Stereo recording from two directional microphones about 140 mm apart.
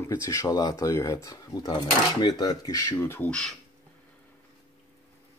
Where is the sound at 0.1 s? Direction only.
20° left (ahead or behind).